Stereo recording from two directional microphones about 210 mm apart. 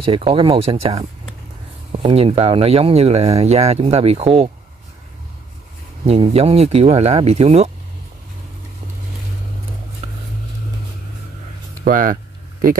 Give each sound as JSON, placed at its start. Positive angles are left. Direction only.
{"t": 0.0, "sound": "speech", "side_deg": -25}
{"t": 6.0, "sound": "speech", "side_deg": -30}
{"t": 11.8, "sound": "speech", "side_deg": -40}